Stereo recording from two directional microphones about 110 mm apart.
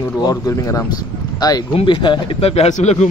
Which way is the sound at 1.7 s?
50° left (ahead or behind).